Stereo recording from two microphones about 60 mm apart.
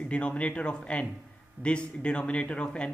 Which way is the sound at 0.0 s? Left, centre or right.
Centre.